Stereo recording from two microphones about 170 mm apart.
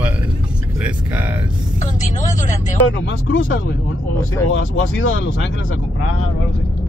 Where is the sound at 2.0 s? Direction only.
45° left (ahead or behind).